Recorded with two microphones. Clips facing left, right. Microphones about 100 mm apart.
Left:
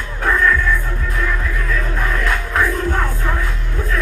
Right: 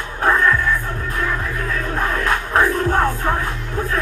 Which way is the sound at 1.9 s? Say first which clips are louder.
Right 3 dB; 40° right (ahead or behind).